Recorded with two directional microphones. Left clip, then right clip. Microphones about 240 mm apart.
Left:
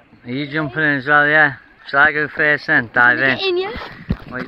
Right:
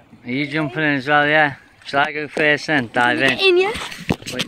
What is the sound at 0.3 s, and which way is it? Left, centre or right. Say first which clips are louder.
Speech: even; centre.